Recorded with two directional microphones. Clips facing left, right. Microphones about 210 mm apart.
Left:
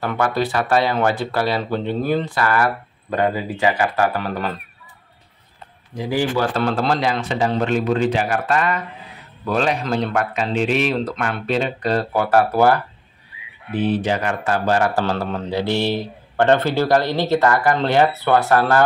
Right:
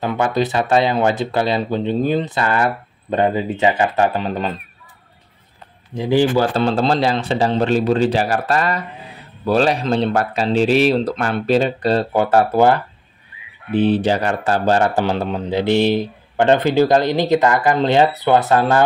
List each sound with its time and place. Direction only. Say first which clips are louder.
0.0 s speech: right 2 dB; 20° right (ahead or behind)
5.9 s speech: right 5 dB; 25° right (ahead or behind)
15.0 s speech: right 2 dB; 15° right (ahead or behind)